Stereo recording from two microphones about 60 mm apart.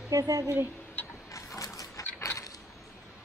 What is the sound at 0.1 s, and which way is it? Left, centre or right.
Speech, right.